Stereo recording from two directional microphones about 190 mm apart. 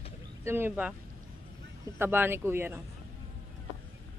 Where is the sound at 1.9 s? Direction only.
10° right (ahead or behind).